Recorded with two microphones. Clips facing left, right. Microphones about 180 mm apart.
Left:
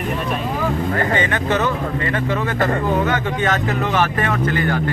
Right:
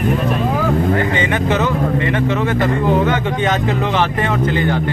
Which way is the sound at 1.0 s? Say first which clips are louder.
Right 2 dB; 20° right (ahead or behind).